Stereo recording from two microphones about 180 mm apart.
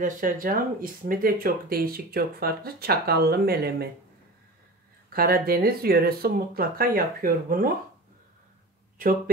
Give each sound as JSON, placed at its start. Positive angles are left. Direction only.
{"t": 0.0, "sound": "speech", "side_deg": -50}
{"t": 5.1, "sound": "speech", "side_deg": -55}